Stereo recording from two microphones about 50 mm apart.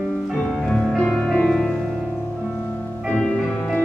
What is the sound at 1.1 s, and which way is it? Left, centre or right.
Music, centre.